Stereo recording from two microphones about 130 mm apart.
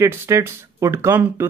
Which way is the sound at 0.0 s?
20° right (ahead or behind).